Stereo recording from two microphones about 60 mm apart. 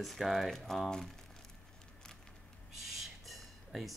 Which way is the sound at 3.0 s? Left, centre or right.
Centre.